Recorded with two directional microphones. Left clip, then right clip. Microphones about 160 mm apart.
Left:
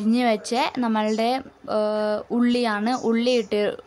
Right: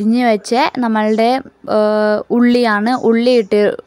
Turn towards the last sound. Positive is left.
turn(degrees=-45)  # may be behind; listen again after turning